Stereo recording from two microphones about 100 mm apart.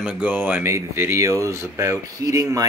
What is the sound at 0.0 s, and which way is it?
Speech, 15° right (ahead or behind).